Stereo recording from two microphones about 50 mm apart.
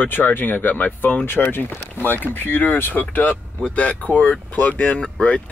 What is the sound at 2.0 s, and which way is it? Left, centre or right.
Speech, left.